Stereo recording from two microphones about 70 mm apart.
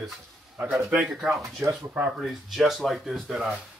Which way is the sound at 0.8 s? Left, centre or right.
Centre.